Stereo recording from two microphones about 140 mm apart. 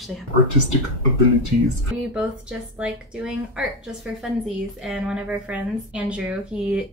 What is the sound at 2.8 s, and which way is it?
Speech, 10° right (ahead or behind).